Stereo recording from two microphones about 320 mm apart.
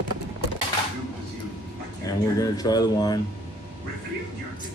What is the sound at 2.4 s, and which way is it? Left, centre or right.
Speech, centre.